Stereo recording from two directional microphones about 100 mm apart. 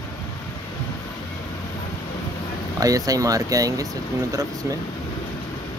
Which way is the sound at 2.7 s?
35° right (ahead or behind).